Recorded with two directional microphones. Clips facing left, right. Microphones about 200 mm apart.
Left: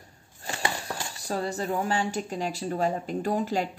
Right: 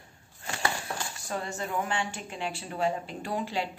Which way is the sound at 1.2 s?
35° left (ahead or behind).